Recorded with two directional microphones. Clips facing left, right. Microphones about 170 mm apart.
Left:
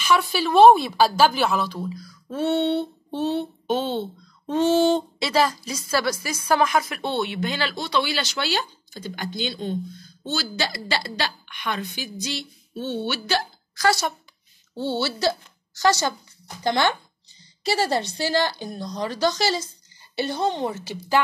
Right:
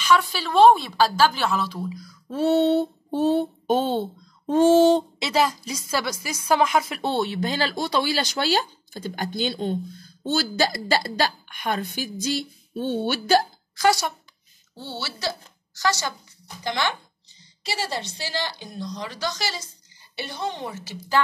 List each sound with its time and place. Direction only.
0.0 s a woman's voice: 10° left (ahead or behind)
2.3 s speech: 35° right (ahead or behind)
5.2 s a woman's voice: 15° right (ahead or behind)
7.0 s speech: 40° right (ahead or behind)
14.8 s a woman's voice: 25° left (ahead or behind)
17.6 s a woman's voice: 55° left (ahead or behind); by 21.0 s 30° left (ahead or behind)